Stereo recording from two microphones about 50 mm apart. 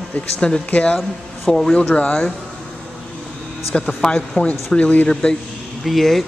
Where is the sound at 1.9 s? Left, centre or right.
Left.